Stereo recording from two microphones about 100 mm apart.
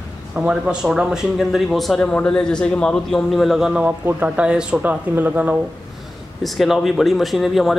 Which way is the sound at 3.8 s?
15° right (ahead or behind).